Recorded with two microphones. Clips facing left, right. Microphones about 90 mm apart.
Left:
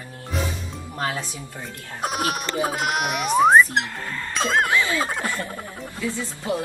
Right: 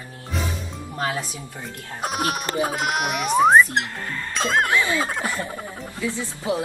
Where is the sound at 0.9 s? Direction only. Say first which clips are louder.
Right 1 dB; 20° right (ahead or behind).